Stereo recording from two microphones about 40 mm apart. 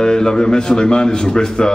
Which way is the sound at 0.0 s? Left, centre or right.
Centre.